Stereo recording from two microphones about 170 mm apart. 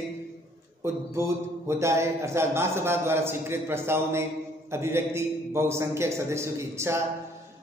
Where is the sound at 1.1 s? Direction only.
15° right (ahead or behind).